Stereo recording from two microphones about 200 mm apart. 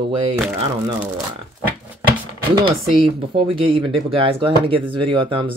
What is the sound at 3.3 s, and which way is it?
Speech, 25° right (ahead or behind).